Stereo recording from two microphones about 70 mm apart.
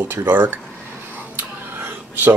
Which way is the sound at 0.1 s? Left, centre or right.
Right.